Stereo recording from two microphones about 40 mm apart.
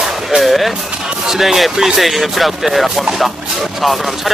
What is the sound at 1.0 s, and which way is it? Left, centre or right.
Speech, centre.